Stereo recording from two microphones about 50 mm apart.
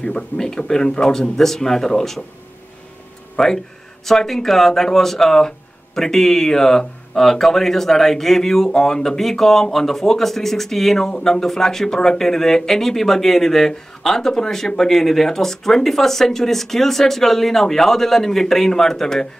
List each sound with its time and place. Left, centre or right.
0.4 s speech: centre
3.3 s speech: centre